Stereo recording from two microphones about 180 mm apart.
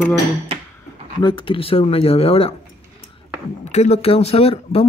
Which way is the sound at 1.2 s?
30° left (ahead or behind).